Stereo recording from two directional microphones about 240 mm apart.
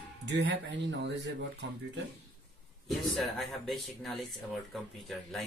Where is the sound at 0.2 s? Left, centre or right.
Right.